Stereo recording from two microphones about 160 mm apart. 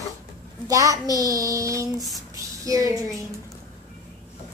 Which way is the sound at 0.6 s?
20° right (ahead or behind).